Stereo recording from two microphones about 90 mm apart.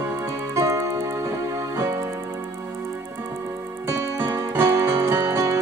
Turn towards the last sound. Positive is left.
turn(degrees=-35)  # may be behind; listen again after turning